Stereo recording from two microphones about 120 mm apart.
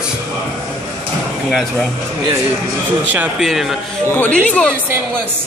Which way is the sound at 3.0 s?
15° right (ahead or behind).